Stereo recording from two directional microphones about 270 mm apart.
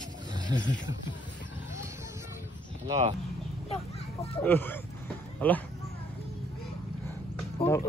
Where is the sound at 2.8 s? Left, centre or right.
Centre.